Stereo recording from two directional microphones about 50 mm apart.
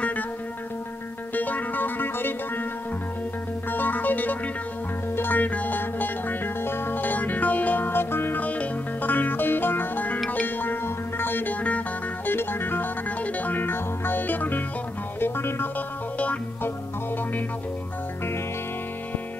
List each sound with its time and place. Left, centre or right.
1.3 s music: left
3.7 s music: left
8.4 s music: left
13.2 s music: left